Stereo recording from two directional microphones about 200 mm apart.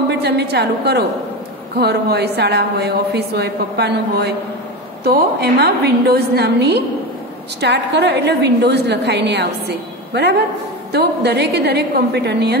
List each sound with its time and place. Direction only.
0.2 s a woman's voice: 55° right (ahead or behind)
10.9 s a woman's voice: 55° right (ahead or behind)